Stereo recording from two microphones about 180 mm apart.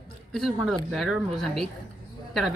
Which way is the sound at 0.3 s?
Centre (ahead or behind).